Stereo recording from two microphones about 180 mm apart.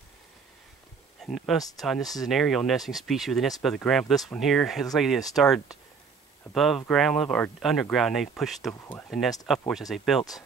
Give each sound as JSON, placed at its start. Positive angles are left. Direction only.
{"t": 1.2, "sound": "speech", "side_deg": 0}